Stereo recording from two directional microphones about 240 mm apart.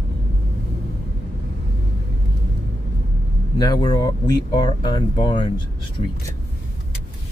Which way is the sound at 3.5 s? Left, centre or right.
Centre.